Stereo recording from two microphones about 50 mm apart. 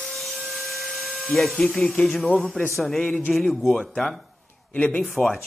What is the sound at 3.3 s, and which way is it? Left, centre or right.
Speech, centre.